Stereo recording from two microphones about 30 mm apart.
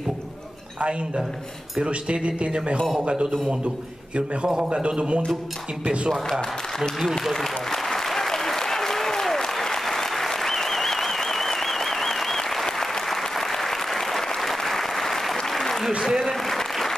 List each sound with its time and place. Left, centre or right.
0.7 s speech: right
4.6 s speech: right
6.8 s speech: centre
7.3 s applause: centre
16.0 s applause: centre
16.4 s applause: centre